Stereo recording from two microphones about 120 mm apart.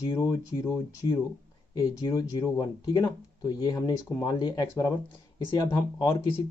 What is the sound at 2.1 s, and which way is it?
Speech, 30° left (ahead or behind).